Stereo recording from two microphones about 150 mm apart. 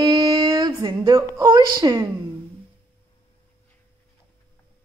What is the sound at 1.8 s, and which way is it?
Speech, 25° right (ahead or behind).